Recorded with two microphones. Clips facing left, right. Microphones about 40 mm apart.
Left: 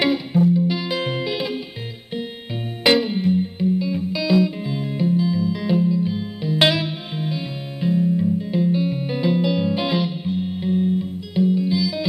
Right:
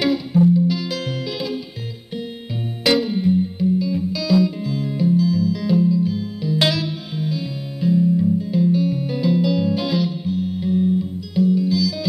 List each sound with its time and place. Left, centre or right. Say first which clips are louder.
0.0 s music: right 1 dB; left
2.8 s music: left 1 dB; left